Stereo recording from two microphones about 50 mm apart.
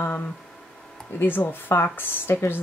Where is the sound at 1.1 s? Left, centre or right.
Left.